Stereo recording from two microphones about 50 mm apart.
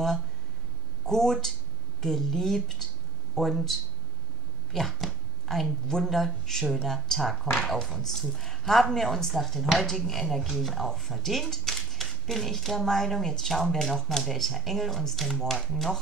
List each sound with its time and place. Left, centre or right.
1.0 s speech: centre
4.7 s speech: centre